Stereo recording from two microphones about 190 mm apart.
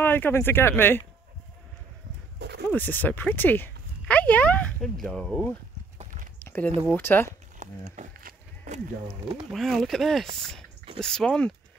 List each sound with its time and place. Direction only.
0.0 s speech: 10° left (ahead or behind)
2.3 s a sound: 65° right (ahead or behind)
2.7 s speech: 10° left (ahead or behind)
5.9 s horse: 45° right (ahead or behind)
6.4 s a sound: 10° left (ahead or behind)
7.0 s speech: 10° left (ahead or behind)
7.2 s livestock: 40° right (ahead or behind)
9.5 s speech: centre (ahead or behind)